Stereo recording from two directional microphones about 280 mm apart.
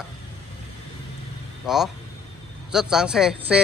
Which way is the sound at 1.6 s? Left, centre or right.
Centre.